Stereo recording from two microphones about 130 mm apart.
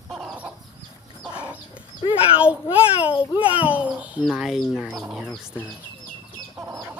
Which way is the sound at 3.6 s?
10° right (ahead or behind).